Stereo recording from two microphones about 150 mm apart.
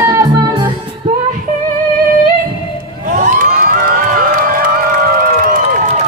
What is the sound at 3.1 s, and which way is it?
Cheering, 60° right (ahead or behind).